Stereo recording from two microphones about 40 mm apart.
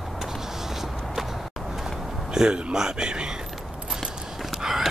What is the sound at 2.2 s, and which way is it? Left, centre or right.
A man's voice, centre.